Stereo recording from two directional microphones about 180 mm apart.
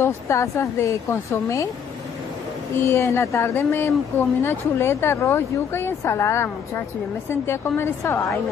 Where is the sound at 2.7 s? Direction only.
15° left (ahead or behind).